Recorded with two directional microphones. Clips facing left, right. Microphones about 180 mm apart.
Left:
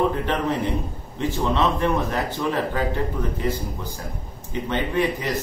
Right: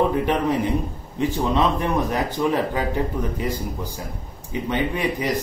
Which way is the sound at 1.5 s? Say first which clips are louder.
Left 2 dB; 15° right (ahead or behind).